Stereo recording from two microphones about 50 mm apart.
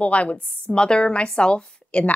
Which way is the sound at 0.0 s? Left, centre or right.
Left.